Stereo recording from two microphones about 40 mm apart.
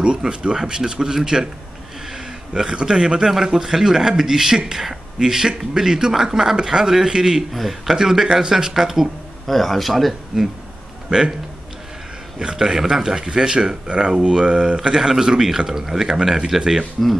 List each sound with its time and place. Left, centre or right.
0.0 s speech: right
2.0 s a sound: centre
3.4 s speech: centre
7.5 s speech: centre
7.9 s speech: centre
9.5 s speech: centre
11.1 s a man's voice: centre
12.4 s speech: centre